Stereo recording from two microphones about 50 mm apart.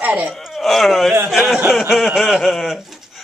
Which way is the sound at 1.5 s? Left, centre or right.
Centre.